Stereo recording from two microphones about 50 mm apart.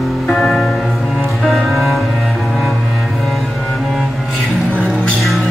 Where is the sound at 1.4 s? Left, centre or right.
Centre.